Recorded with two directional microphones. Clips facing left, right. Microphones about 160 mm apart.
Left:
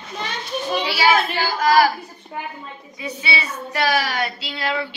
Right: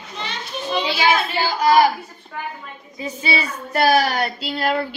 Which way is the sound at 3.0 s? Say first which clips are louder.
Right 3 dB; 40° right (ahead or behind).